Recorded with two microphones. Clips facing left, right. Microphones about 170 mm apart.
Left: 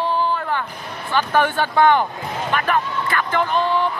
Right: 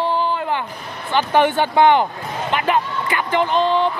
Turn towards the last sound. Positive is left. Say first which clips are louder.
# right 2 dB
turn(degrees=-20)  # may be behind; listen again after turning